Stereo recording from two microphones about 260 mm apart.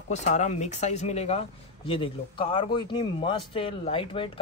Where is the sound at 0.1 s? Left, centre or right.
Left.